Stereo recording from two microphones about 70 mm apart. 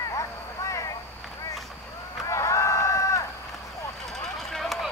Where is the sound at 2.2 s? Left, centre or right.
Left.